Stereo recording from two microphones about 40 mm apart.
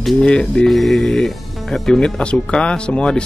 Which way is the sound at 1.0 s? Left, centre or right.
Centre.